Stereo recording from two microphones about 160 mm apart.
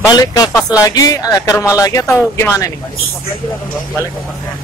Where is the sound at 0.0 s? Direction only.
20° left (ahead or behind).